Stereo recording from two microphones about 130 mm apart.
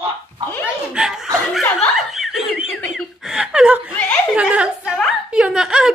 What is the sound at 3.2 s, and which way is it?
Chuckle, 10° right (ahead or behind).